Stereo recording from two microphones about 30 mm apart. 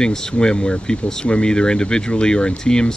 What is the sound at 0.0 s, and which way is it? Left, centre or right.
Speech, centre.